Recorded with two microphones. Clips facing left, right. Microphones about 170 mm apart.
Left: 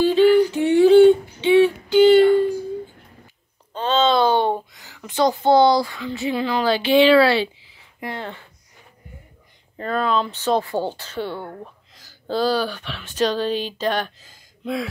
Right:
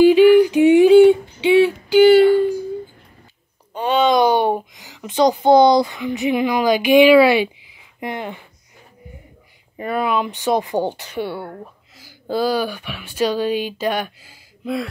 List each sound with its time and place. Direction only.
0.0 s a sound: 15° right (ahead or behind)
3.7 s speech: 15° right (ahead or behind)
9.8 s speech: 10° right (ahead or behind)